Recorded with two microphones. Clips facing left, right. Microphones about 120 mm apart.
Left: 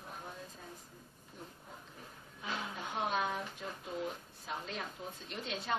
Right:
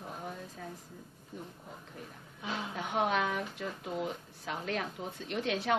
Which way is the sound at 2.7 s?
75° right (ahead or behind).